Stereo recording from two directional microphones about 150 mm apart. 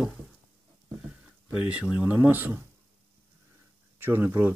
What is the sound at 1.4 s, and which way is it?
Speech, 10° right (ahead or behind).